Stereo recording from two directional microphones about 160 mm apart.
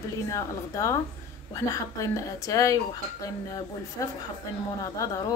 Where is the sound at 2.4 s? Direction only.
20° left (ahead or behind).